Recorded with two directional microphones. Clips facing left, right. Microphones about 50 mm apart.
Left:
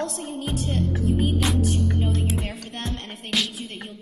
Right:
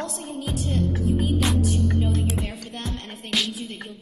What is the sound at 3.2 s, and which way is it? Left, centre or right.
Music, centre.